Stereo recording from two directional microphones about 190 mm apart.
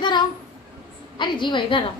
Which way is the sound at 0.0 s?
25° left (ahead or behind).